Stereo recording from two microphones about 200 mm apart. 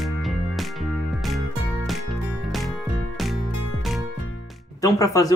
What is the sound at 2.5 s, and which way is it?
Music, centre (ahead or behind).